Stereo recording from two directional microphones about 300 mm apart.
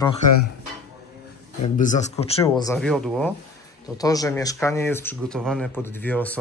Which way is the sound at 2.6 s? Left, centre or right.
Centre.